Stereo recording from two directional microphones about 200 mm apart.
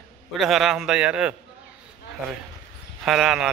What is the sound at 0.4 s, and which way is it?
Speech, centre (ahead or behind).